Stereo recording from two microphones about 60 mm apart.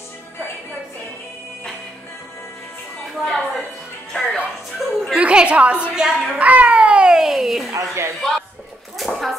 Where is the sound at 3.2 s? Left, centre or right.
Centre.